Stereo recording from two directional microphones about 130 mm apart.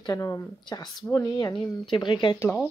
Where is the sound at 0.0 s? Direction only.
20° left (ahead or behind).